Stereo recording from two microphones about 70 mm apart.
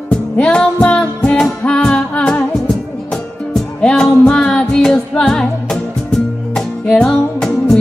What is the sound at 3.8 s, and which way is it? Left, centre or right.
Music, centre.